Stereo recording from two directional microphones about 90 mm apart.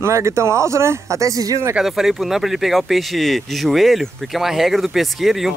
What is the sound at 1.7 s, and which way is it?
Speech, 5° right (ahead or behind).